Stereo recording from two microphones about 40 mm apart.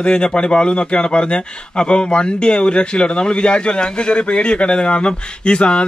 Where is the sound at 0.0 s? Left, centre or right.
Left.